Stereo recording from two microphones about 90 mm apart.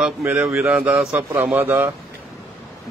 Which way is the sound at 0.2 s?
20° right (ahead or behind).